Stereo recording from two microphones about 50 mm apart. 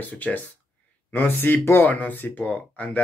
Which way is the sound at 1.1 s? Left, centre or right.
Left.